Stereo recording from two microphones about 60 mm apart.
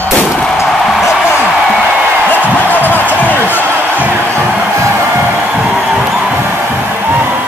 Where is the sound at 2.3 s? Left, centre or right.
Left.